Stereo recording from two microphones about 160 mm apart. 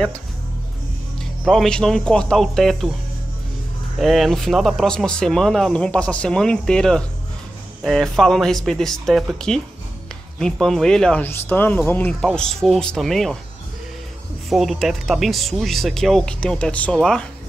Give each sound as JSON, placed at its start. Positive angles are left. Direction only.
{"t": 1.4, "sound": "speech", "side_deg": 0}
{"t": 4.0, "sound": "speech", "side_deg": 0}
{"t": 12.2, "sound": "speech", "side_deg": 0}
{"t": 14.5, "sound": "speech", "side_deg": 0}